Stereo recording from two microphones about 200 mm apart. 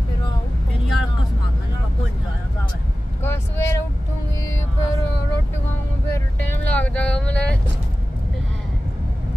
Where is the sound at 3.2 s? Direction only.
10° left (ahead or behind).